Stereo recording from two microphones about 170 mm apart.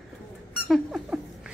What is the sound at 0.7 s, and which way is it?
Rodents, 5° right (ahead or behind).